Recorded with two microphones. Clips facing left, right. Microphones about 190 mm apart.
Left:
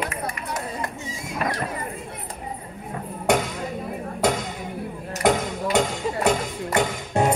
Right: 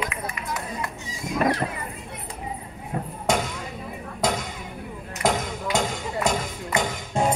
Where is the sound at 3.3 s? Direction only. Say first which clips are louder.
Left 3 dB; 65° left (ahead or behind).